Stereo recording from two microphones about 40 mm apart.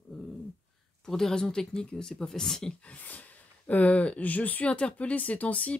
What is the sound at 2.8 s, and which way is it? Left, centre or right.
Speech, left.